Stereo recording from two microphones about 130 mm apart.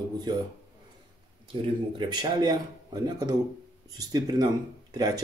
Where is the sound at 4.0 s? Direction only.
30° right (ahead or behind).